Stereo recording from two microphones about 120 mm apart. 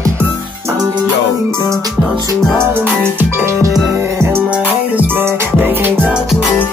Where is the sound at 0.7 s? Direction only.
30° right (ahead or behind); by 5.9 s 15° right (ahead or behind).